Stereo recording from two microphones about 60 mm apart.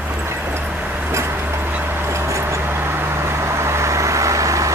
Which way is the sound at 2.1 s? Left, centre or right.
Right.